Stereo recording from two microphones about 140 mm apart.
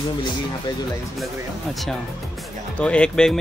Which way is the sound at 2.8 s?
5° left (ahead or behind).